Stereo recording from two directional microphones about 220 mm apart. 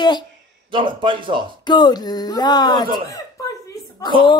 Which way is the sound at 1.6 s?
20° left (ahead or behind).